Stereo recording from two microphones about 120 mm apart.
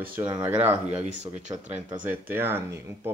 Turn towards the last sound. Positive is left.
turn(degrees=-20)  # may be behind; listen again after turning